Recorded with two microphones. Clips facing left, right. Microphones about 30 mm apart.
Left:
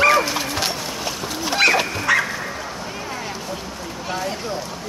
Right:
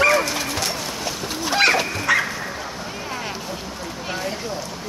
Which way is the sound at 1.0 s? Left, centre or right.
Centre.